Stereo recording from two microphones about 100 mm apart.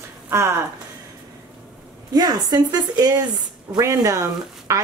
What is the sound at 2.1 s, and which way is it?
Speech, 40° right (ahead or behind).